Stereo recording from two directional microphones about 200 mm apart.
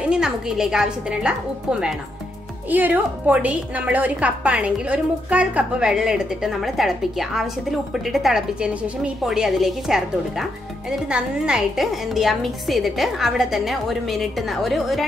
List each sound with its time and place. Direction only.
0.0 s a woman's voice: 5° right (ahead or behind)